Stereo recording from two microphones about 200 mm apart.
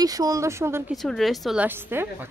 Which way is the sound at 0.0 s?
20° right (ahead or behind).